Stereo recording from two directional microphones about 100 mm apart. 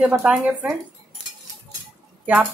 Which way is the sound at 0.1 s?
5° right (ahead or behind).